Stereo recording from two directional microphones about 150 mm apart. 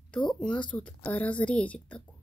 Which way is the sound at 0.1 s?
5° left (ahead or behind).